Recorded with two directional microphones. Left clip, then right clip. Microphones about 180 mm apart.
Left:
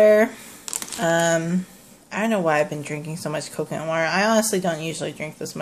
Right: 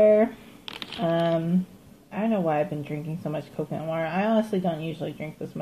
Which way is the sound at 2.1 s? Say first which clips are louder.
Left 5 dB; 55° left (ahead or behind).